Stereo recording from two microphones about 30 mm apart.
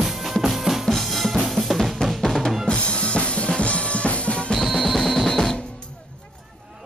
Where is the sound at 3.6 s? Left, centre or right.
Left.